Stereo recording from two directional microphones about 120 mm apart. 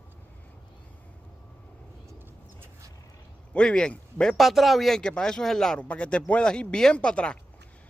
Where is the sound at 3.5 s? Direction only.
10° left (ahead or behind).